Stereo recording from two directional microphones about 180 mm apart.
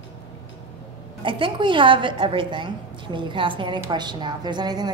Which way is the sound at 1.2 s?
30° right (ahead or behind).